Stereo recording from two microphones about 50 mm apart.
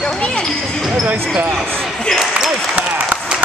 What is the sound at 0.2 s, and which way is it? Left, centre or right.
Basketball bounce, centre.